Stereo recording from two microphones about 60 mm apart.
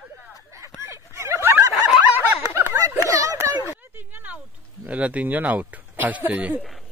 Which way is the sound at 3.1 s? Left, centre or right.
Right.